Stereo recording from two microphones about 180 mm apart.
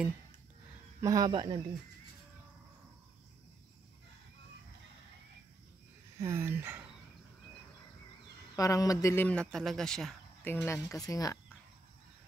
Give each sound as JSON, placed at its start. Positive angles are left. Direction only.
{"t": 1.0, "sound": "speech", "side_deg": -20}
{"t": 6.1, "sound": "speech", "side_deg": -15}
{"t": 8.5, "sound": "a man's voice", "side_deg": 20}